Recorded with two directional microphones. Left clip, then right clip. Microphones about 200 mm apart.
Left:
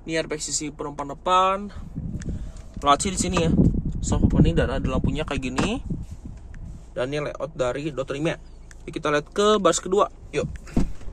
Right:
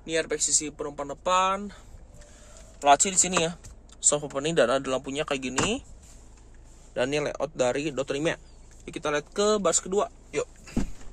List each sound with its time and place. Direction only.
0.0 s speech: 5° right (ahead or behind)
2.8 s speech: 5° right (ahead or behind)
3.9 s speech: 25° right (ahead or behind); by 5.9 s 10° right (ahead or behind)
6.9 s speech: 25° right (ahead or behind)
8.8 s speech: 5° right (ahead or behind)